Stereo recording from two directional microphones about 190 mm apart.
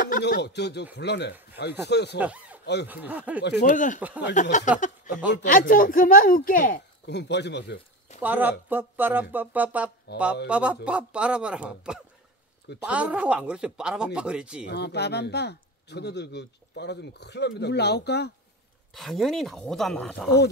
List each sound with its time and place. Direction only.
0.0 s speech: 50° left (ahead or behind)
2.1 s speech: 10° right (ahead or behind)
2.6 s speech: 60° left (ahead or behind)
2.9 s speech: 10° right (ahead or behind)
3.6 s speech: 40° left (ahead or behind)
4.0 s speech: 10° right (ahead or behind)
4.4 s speech: 40° left (ahead or behind)
7.1 s speech: 65° left (ahead or behind)
8.2 s speech: 10° right (ahead or behind)
10.1 s speech: 60° left (ahead or behind)
10.5 s speech: 5° right (ahead or behind)
14.7 s speech: 60° left (ahead or behind)
18.9 s speech: centre (ahead or behind)